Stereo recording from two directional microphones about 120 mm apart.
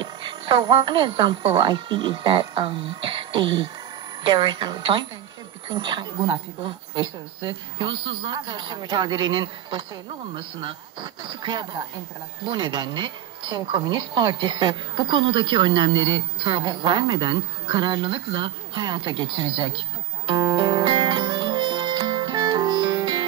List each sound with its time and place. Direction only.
0.0 s a woman's voice: 40° right (ahead or behind)
20.2 s music: 40° right (ahead or behind)